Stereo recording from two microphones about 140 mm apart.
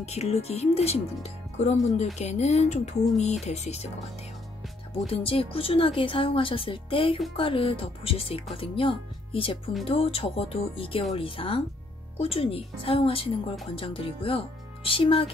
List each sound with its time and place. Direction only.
0.0 s speech: 50° left (ahead or behind)
4.9 s speech: 45° left (ahead or behind)